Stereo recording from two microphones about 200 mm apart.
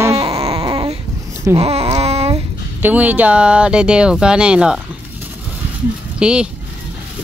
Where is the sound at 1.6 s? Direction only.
30° right (ahead or behind).